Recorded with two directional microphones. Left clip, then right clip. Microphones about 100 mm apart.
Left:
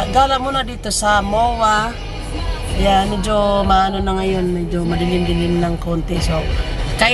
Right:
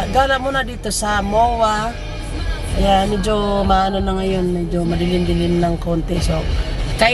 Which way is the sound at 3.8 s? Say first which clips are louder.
Left 1 dB; 20° left (ahead or behind).